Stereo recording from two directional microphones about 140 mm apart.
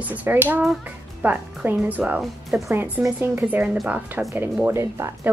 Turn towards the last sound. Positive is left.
turn(degrees=-20)  # may be behind; listen again after turning